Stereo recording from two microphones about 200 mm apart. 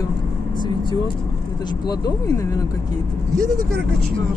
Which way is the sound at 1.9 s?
20° left (ahead or behind).